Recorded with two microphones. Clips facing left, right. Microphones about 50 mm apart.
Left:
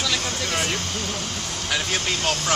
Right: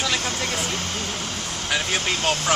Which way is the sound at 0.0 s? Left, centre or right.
Right.